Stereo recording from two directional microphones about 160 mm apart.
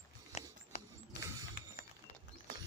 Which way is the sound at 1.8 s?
65° left (ahead or behind).